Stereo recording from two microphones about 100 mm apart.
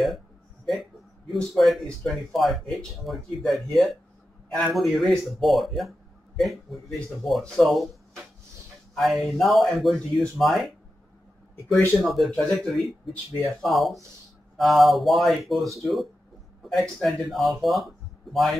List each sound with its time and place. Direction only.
1.3 s speech: centre (ahead or behind)
4.6 s speech: centre (ahead or behind)
12.0 s speech: centre (ahead or behind)